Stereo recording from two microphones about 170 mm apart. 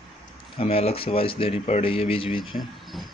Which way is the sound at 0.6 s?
35° left (ahead or behind).